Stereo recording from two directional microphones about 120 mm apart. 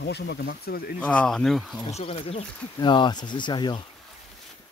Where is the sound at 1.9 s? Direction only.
60° left (ahead or behind).